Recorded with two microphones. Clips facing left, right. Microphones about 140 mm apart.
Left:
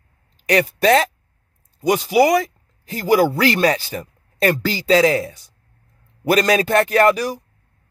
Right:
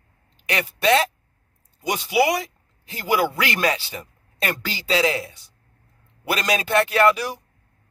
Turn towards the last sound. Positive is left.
turn(degrees=45)  # may be behind; listen again after turning